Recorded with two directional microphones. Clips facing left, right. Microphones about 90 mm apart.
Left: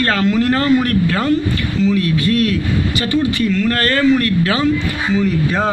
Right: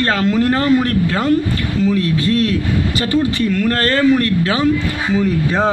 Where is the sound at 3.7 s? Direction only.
30° right (ahead or behind).